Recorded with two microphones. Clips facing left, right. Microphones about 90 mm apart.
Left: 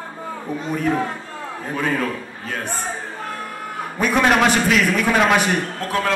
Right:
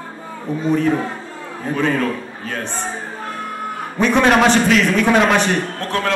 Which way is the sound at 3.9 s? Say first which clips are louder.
Right 3 dB; 10° left (ahead or behind).